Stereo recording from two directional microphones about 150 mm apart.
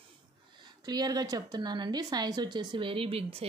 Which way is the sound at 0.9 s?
25° right (ahead or behind).